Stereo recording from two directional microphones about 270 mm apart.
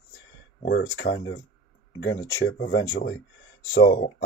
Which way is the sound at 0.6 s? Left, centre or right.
Left.